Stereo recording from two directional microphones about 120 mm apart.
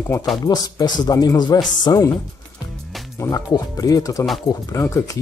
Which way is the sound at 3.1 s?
30° left (ahead or behind).